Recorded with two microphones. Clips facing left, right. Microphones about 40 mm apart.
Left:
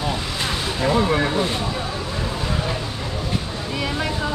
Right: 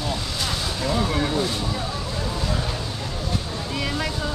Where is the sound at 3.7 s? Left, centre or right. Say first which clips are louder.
Left 3 dB; centre.